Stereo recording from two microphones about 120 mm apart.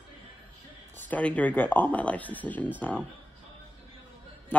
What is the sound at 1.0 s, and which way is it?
Speech, 10° left (ahead or behind).